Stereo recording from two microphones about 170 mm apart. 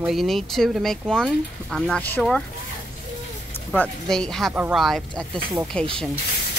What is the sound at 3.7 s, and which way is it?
Speech, 5° left (ahead or behind).